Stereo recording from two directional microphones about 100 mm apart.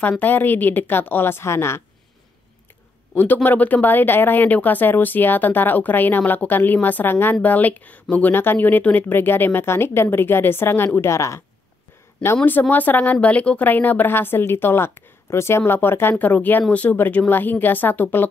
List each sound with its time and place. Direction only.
0.2 s speech: 20° left (ahead or behind)
3.4 s speech: 15° left (ahead or behind)
12.4 s speech: 20° left (ahead or behind)